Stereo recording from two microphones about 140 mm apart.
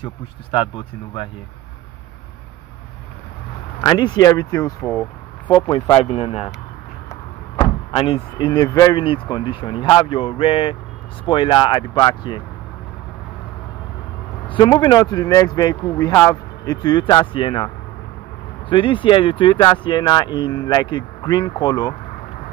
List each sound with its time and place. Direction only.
0.5 s speech: 35° left (ahead or behind)
3.8 s speech: 30° left (ahead or behind)
6.1 s speech: 45° left (ahead or behind)
7.1 s a sound: 25° left (ahead or behind)
7.9 s speech: 40° left (ahead or behind)
14.5 s speech: 35° left (ahead or behind)
18.7 s speech: 35° left (ahead or behind)